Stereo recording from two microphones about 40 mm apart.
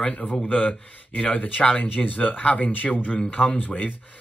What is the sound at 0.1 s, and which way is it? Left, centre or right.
A man's voice, left.